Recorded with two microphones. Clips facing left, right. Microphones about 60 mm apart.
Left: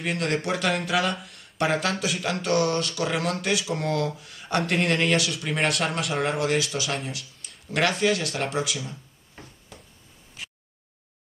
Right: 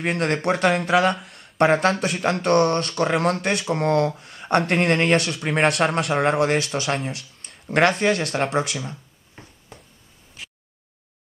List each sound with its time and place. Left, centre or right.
0.0 s speech: right
0.9 s speech: centre
1.6 s speech: right
5.4 s speech: right
6.5 s speech: right